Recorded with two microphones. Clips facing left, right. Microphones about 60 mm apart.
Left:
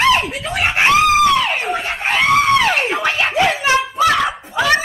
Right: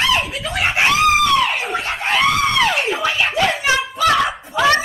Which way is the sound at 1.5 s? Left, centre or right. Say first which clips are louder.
Left 1 dB; centre.